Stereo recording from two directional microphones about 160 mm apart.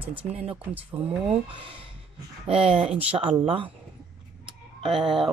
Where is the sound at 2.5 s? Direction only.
35° right (ahead or behind).